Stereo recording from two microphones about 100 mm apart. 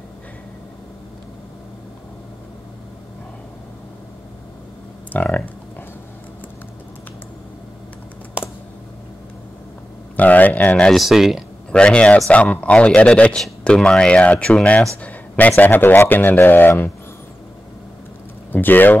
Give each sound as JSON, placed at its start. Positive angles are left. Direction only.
{"t": 5.1, "sound": "a man's voice", "side_deg": 15}
{"t": 10.1, "sound": "speech", "side_deg": 15}
{"t": 10.9, "sound": "speech", "side_deg": 0}
{"t": 11.7, "sound": "a man's voice", "side_deg": 10}
{"t": 18.5, "sound": "speech", "side_deg": 20}